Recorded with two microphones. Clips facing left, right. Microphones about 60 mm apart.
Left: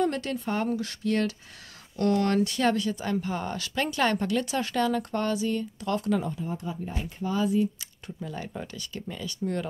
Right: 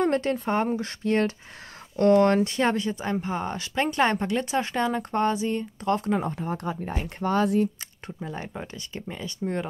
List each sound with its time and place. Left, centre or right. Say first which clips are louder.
0.0 s speech: right 4 dB; right
6.2 s speech: right 3 dB; right
6.9 s speech: right 5 dB; right
8.2 s speech: right 1 dB; right